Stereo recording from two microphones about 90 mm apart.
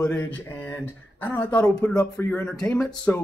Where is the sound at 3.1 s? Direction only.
25° left (ahead or behind).